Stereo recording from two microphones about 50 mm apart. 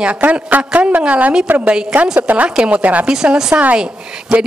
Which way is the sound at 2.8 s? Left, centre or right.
Right.